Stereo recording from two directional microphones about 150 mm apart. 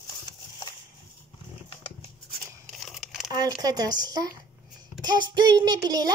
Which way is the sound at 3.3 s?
25° right (ahead or behind).